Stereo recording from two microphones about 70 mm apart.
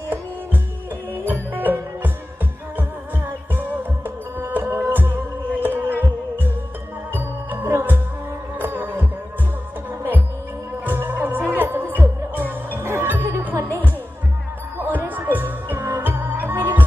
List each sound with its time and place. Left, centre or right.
1.2 s music: right
3.3 s music: right
7.2 s music: right
10.9 s music: right
14.8 s music: right